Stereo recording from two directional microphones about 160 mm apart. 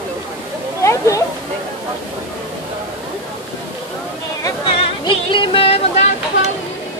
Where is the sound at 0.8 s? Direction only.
20° left (ahead or behind).